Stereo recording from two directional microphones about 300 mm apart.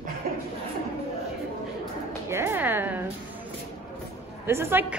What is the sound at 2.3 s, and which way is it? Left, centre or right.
Speech, centre.